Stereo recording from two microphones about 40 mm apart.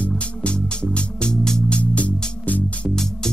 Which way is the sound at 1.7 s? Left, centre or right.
Left.